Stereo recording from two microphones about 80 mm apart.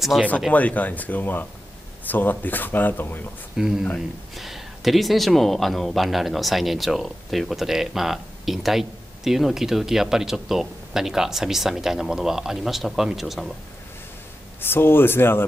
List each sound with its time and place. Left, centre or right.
0.5 s speech: centre
3.5 s speech: centre
14.6 s speech: left